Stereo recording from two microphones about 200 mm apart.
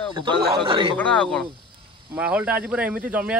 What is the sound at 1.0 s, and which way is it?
Speech, 5° left (ahead or behind).